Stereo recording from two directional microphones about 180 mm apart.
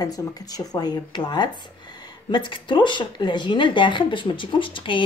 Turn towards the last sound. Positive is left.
turn(degrees=25)  # may be behind; listen again after turning